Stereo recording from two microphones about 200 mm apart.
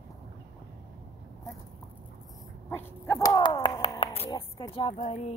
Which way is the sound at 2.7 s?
15° left (ahead or behind).